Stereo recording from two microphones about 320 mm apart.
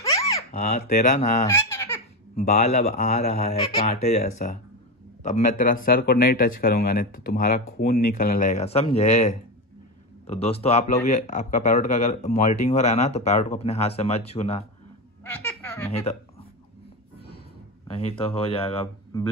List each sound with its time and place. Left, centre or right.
0.0 s babbling: centre
0.5 s speech: left
1.5 s baby laughter: centre
2.3 s speech: left
15.9 s speech: centre
17.8 s speech: centre